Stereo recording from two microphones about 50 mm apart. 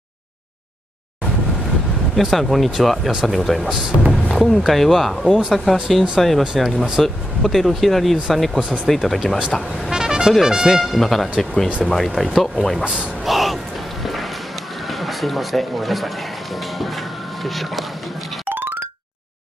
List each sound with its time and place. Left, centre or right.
2.3 s speech: centre
3.7 s speech: centre
8.5 s a man's voice: centre
8.8 s speech: centre
9.4 s speech: centre
10.8 s speech: centre
12.8 s a man's voice: right
13.2 s a sound: centre
14.0 s music: centre
14.9 s speech: centre
16.5 s a sound: centre